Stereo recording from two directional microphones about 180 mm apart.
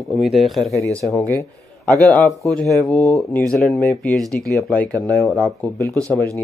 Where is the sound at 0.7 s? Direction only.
15° left (ahead or behind).